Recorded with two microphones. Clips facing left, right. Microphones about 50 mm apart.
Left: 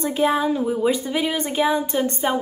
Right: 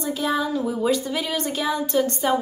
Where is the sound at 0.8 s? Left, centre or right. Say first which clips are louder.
Left 1 dB; left.